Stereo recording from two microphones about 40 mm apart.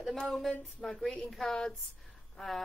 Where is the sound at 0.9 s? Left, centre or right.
Centre.